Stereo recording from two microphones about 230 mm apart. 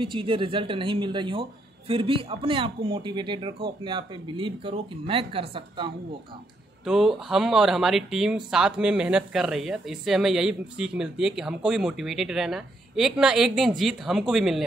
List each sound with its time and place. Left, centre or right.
0.0 s speech: right
6.8 s a woman's voice: centre